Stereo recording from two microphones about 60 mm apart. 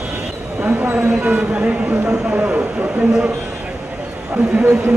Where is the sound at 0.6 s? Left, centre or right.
Right.